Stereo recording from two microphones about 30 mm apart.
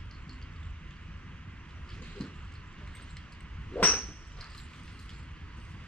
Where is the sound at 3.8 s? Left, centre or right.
Left.